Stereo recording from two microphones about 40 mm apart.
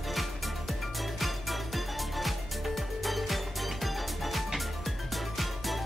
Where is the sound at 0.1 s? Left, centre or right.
Centre.